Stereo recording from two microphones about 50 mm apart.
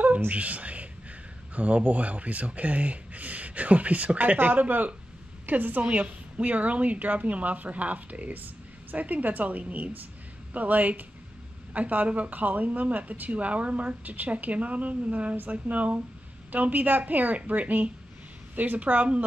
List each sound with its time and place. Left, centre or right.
0.3 s speech: right